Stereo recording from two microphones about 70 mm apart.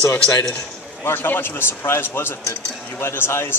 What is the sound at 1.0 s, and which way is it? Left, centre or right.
A man's voice, left.